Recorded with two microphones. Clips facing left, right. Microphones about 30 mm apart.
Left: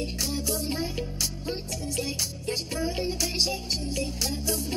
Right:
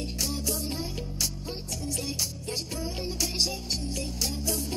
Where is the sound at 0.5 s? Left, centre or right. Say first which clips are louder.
Left 3 dB; left.